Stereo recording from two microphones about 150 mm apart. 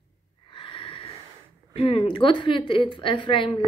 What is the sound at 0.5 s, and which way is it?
Snort, 35° left (ahead or behind).